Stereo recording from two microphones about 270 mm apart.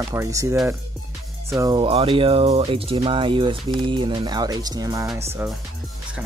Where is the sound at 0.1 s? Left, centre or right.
Centre.